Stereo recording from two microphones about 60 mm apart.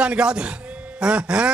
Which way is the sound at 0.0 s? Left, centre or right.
Centre.